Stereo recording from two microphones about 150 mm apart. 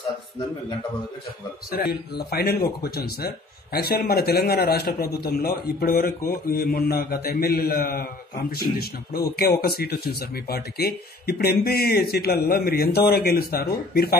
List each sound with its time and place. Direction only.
1.7 s a man's voice: 90° left
6.5 s a man's voice: 90° left